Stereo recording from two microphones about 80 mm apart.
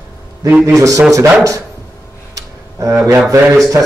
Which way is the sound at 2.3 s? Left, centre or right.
Right.